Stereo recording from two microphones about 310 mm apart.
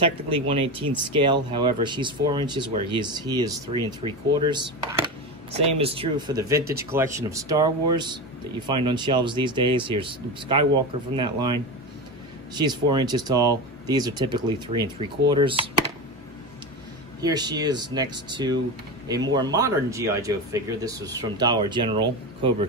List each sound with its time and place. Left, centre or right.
0.0 s speech: centre
6.6 s speech: right
6.9 s speech: centre
11.1 s speech: centre
12.9 s speech: centre
17.2 s speech: centre